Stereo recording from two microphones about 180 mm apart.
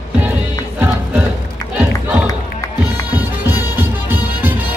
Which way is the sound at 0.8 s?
5° right (ahead or behind).